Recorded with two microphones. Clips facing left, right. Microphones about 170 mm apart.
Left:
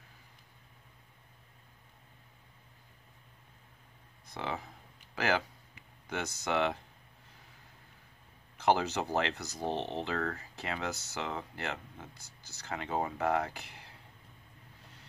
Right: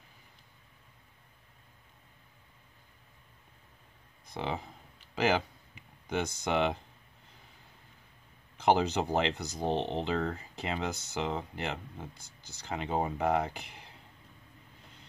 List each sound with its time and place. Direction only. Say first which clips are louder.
4.3 s speech: right 2 dB; 25° right (ahead or behind)
8.5 s speech: right 2 dB; 15° right (ahead or behind)